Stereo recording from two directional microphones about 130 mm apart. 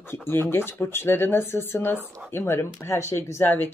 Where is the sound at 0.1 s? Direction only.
15° left (ahead or behind).